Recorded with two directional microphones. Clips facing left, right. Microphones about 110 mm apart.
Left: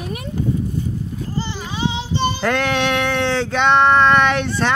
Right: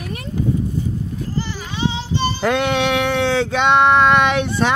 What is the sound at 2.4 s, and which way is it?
Speech, 10° right (ahead or behind).